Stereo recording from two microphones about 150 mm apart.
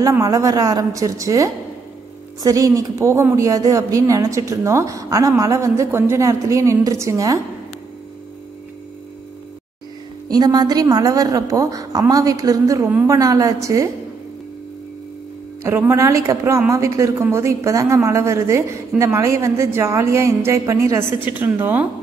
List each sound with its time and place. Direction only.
0.0 s speech: 25° right (ahead or behind)
10.2 s speech: 25° right (ahead or behind)
15.6 s a woman's voice: 15° right (ahead or behind)